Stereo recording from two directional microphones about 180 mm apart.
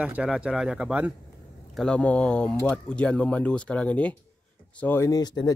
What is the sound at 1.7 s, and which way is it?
Speech, 5° left (ahead or behind).